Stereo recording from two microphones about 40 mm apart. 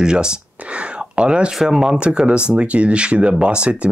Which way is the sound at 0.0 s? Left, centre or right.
Right.